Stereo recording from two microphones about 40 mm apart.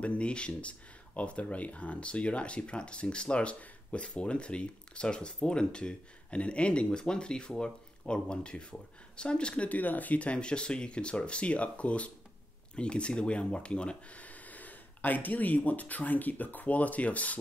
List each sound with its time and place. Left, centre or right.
0.0 s speech: left
9.7 s speech: left